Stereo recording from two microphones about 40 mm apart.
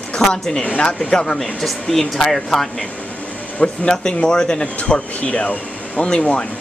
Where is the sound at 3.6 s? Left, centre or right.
Left.